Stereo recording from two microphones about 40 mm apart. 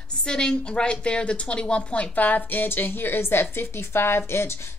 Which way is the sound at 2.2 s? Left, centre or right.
Left.